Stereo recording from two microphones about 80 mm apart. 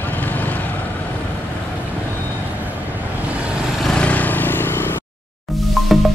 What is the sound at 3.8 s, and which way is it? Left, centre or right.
Vehicle, centre.